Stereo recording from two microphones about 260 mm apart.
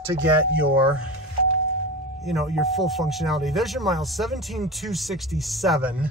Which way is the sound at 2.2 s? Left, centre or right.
Centre.